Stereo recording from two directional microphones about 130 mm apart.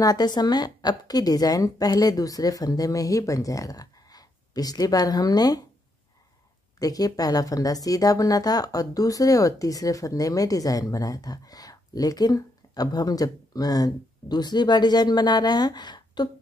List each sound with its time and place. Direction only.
0.0 s a woman's voice: 30° left (ahead or behind)
6.8 s a woman's voice: 30° left (ahead or behind)